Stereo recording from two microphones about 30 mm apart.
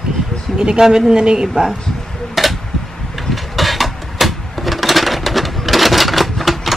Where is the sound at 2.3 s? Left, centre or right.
Centre.